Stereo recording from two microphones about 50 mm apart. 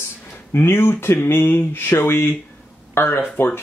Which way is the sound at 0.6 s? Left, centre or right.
Left.